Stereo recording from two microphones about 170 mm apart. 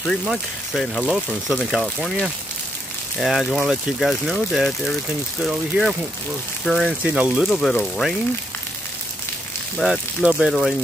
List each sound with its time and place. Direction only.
0.0 s speech: centre (ahead or behind)
9.8 s speech: 5° right (ahead or behind)